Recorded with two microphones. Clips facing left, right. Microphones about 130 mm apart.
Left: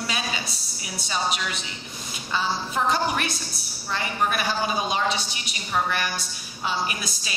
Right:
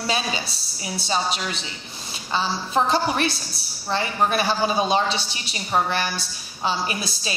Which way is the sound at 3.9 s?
30° right (ahead or behind).